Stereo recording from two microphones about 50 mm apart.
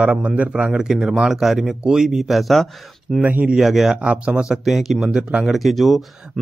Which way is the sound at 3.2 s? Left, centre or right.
Right.